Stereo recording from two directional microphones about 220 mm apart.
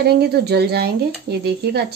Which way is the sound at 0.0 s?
45° right (ahead or behind).